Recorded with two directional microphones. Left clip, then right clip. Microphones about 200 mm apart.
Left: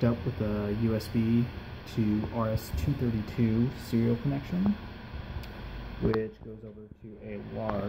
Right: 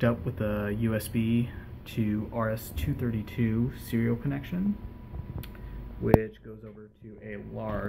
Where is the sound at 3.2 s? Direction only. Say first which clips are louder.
Left 1 dB; 10° left (ahead or behind).